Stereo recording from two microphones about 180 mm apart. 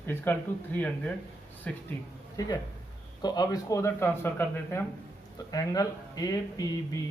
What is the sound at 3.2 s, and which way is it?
A man's voice, 20° left (ahead or behind).